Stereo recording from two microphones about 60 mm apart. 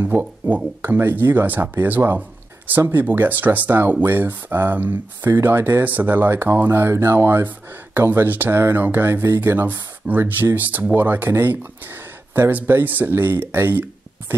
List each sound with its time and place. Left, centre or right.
0.0 s speech: right